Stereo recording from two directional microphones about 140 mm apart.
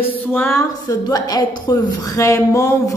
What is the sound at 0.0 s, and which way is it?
A woman's voice, 15° left (ahead or behind).